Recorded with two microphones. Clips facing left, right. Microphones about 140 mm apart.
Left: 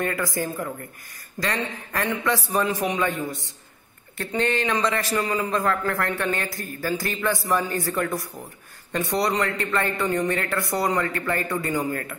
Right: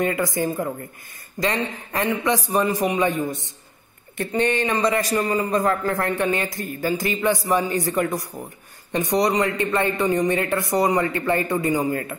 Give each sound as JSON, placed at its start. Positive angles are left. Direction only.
{"t": 0.0, "sound": "a man's voice", "side_deg": -20}
{"t": 4.5, "sound": "a man's voice", "side_deg": -10}